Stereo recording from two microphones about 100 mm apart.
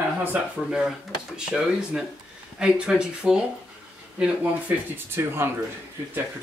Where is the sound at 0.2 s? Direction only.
15° right (ahead or behind).